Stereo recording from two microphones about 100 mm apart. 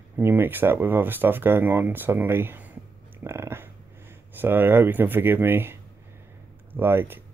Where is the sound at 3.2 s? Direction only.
25° right (ahead or behind).